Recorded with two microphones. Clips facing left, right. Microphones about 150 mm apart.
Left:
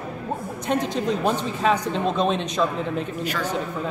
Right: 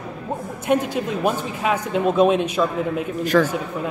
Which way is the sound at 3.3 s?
55° right (ahead or behind).